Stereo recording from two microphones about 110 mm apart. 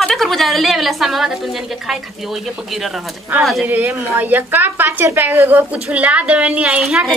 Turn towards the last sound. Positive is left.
turn(degrees=-5)  # may be behind; listen again after turning